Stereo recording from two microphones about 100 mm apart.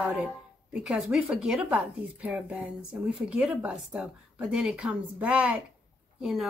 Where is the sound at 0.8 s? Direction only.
5° right (ahead or behind).